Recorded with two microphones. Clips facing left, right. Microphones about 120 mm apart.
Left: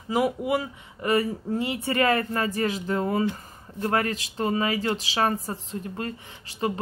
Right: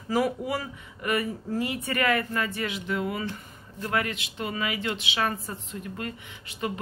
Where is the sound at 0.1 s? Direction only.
20° left (ahead or behind).